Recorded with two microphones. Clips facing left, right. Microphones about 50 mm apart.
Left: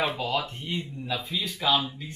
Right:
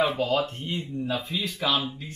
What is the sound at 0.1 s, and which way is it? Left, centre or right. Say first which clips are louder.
Speech: right 4 dB; right.